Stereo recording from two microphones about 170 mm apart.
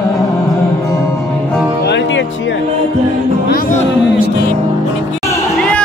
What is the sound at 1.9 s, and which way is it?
Music, 90° left.